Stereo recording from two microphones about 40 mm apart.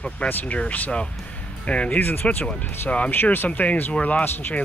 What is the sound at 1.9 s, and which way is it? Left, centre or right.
Speech, left.